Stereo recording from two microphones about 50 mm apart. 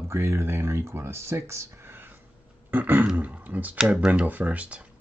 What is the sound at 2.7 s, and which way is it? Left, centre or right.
Speech, right.